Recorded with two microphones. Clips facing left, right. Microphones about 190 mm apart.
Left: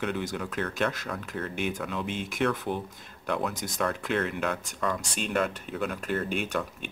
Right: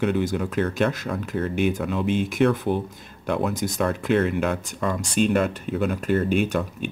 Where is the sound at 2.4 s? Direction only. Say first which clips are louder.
Right 6 dB; 25° right (ahead or behind).